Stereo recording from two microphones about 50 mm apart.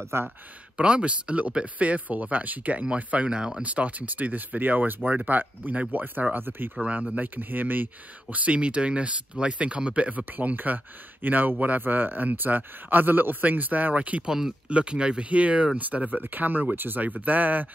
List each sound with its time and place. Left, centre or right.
0.0 s speech: right
0.7 s speech: right
3.3 s speech: centre
3.6 s speech: right
6.8 s speech: right
7.3 s speech: right
10.3 s speech: right